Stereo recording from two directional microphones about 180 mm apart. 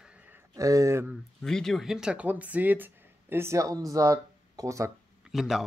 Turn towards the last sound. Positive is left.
turn(degrees=0)  # may be behind; listen again after turning